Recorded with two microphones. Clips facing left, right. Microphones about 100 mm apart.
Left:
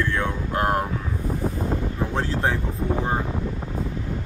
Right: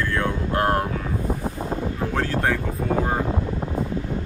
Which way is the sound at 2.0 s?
20° left (ahead or behind).